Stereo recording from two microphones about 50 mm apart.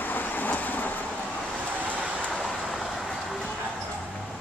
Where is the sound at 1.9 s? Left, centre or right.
Right.